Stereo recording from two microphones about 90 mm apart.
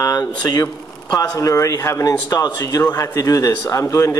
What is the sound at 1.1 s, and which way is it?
A man's voice, 35° left (ahead or behind).